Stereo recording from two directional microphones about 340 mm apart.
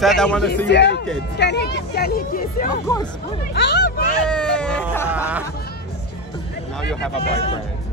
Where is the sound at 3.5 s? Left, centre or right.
Left.